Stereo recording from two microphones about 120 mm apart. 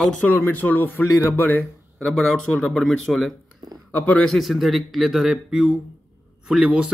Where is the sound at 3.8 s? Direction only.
15° left (ahead or behind).